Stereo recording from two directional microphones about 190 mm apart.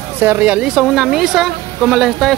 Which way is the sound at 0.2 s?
10° right (ahead or behind).